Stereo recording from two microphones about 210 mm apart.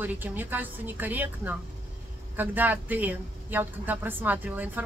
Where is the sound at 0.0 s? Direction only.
10° right (ahead or behind).